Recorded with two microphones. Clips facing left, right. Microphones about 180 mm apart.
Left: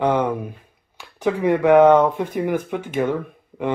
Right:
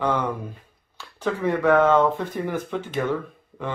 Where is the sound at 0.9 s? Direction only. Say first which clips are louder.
Left 5 dB; 15° left (ahead or behind).